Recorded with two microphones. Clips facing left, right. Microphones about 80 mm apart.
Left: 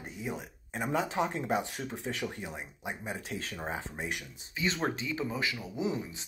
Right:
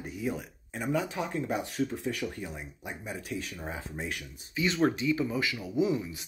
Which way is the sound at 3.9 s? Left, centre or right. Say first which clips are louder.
Even; centre.